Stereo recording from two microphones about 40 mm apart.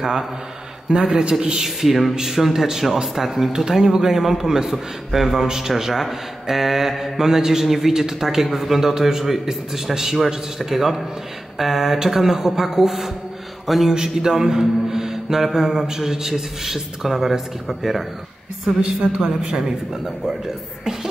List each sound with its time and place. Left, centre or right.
0.9 s a woman's voice: right
1.6 s a man's voice: centre
13.9 s a man's voice: centre
18.8 s a woman's voice: right